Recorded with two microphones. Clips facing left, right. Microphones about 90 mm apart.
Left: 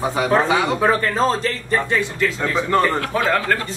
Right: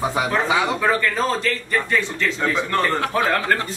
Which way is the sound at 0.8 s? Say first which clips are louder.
Left 3 dB; 35° left (ahead or behind).